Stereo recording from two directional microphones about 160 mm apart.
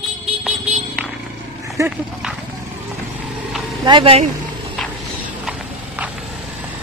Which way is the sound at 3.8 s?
30° right (ahead or behind).